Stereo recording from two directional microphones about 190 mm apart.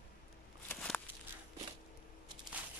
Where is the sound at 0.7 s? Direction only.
5° left (ahead or behind).